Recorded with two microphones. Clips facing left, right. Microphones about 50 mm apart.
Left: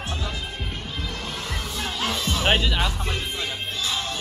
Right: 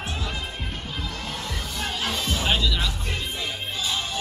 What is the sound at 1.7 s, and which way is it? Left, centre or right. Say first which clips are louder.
Music: left 1 dB; centre.